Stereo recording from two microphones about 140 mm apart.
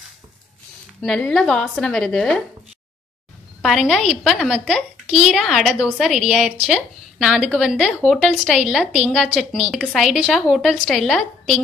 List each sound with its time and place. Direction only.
1.0 s a woman's voice: 5° left (ahead or behind)
3.6 s a woman's voice: centre (ahead or behind)